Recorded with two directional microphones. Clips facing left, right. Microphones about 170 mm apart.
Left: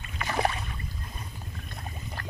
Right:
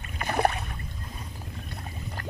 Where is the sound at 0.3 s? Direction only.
55° right (ahead or behind).